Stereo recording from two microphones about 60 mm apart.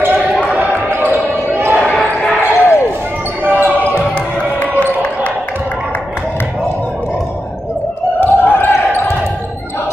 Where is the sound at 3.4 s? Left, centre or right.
Right.